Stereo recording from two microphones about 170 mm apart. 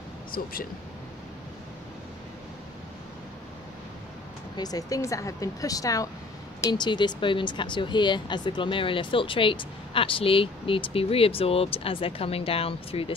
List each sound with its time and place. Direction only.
0.3 s speech: 55° left (ahead or behind)
4.6 s speech: 20° left (ahead or behind)